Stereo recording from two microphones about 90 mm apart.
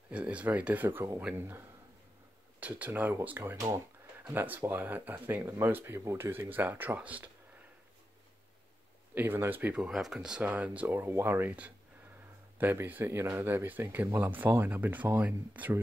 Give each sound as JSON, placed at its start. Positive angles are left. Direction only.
{"t": 0.1, "sound": "speech", "side_deg": -15}
{"t": 2.6, "sound": "speech", "side_deg": -15}
{"t": 9.1, "sound": "speech", "side_deg": -25}
{"t": 9.8, "sound": "speech", "side_deg": -5}
{"t": 12.5, "sound": "speech", "side_deg": -20}